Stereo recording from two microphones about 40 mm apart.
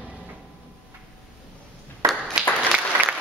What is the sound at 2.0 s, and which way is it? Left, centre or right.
Clapping, right.